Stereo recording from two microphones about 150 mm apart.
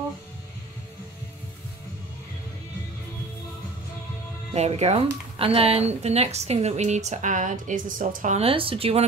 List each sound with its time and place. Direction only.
4.6 s a woman's voice: 45° right (ahead or behind)
8.4 s speech: 40° right (ahead or behind)